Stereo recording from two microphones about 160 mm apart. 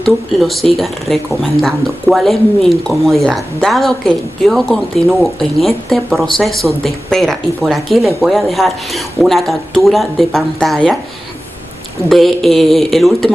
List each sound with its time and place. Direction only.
0.0 s speech: centre (ahead or behind)
12.1 s speech: centre (ahead or behind)